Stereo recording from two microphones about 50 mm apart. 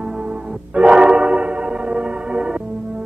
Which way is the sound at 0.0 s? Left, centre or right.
Centre.